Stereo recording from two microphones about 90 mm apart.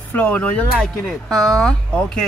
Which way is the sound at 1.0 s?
Centre (ahead or behind).